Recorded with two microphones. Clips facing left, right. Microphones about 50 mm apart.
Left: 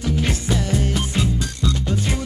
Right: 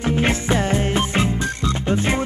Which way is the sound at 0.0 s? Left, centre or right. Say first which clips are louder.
Right 3 dB; right.